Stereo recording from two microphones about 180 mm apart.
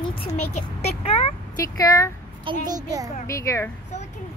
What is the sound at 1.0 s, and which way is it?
Speech, 30° left (ahead or behind).